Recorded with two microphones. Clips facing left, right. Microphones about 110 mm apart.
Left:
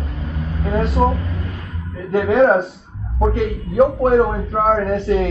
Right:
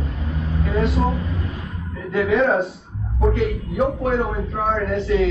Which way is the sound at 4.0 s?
35° left (ahead or behind).